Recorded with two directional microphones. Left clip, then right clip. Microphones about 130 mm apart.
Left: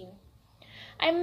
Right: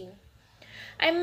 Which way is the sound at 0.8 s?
25° right (ahead or behind).